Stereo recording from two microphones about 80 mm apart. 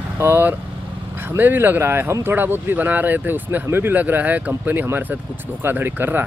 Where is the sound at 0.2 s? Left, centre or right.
Right.